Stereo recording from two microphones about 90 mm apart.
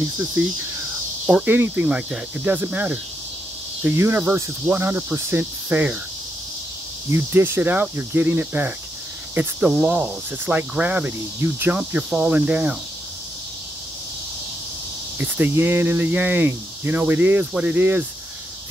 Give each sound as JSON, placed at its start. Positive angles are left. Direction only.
{"t": 0.2, "sound": "speech", "side_deg": -20}
{"t": 1.2, "sound": "cricket", "side_deg": -10}
{"t": 3.8, "sound": "speech", "side_deg": -25}
{"t": 7.1, "sound": "speech", "side_deg": -25}
{"t": 9.7, "sound": "cricket", "side_deg": -10}
{"t": 10.7, "sound": "speech", "side_deg": -15}
{"t": 12.1, "sound": "cricket", "side_deg": -15}
{"t": 15.1, "sound": "speech", "side_deg": -20}